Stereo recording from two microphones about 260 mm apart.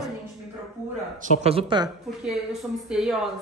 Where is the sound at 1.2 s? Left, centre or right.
Right.